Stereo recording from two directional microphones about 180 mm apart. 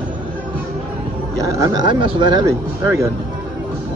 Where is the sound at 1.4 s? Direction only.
20° right (ahead or behind).